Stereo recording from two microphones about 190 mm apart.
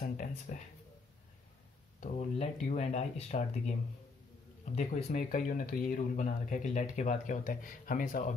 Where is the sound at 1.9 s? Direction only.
35° left (ahead or behind).